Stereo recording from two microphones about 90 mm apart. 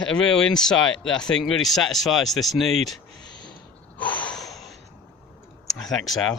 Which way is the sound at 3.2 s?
55° left (ahead or behind).